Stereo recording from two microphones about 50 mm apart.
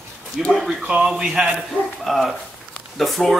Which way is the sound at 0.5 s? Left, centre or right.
Centre.